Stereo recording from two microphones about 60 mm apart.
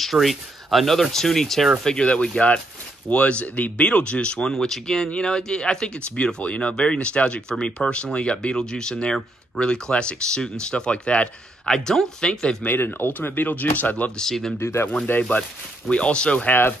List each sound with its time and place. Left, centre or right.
0.0 s speech: centre
1.9 s speech: centre
11.7 s speech: centre
12.6 s speech: left
14.1 s speech: centre
14.6 s speech: left
15.9 s speech: centre
16.4 s speech: left